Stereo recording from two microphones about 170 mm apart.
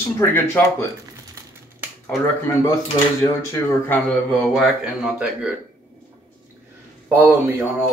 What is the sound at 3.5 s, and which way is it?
Speech, 10° left (ahead or behind).